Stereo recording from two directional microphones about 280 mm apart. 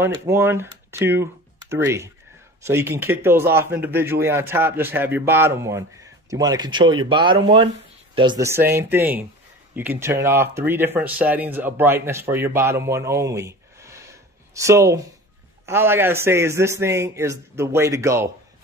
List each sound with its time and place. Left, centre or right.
0.0 s speech: centre